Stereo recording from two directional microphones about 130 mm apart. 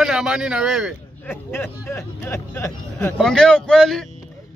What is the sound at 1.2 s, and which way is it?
Speech, 20° left (ahead or behind).